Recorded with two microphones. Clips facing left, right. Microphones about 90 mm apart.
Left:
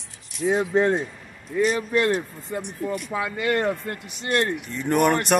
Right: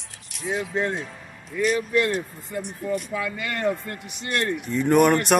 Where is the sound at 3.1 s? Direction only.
30° left (ahead or behind).